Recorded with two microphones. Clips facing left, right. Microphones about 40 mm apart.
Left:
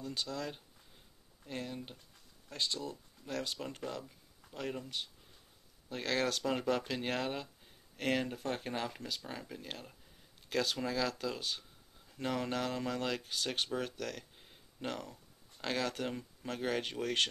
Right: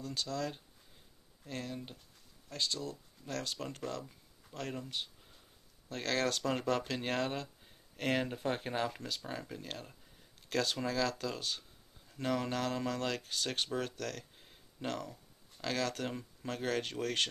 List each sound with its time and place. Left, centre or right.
0.0 s speech: centre
8.2 s speech: centre
14.4 s a sound: centre
15.6 s speech: centre
16.1 s speech: centre